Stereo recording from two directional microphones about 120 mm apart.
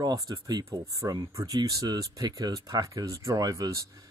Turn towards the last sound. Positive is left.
turn(degrees=-25)  # may be behind; listen again after turning